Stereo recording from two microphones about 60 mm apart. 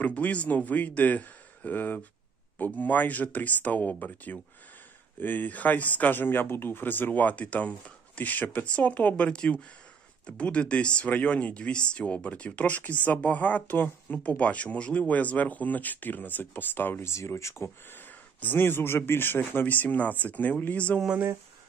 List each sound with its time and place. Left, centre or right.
0.0 s a man's voice: left
17.1 s speech: left
17.9 s a man's voice: left